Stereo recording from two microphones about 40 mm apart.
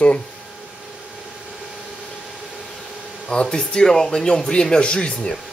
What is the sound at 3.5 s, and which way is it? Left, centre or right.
Speech, centre.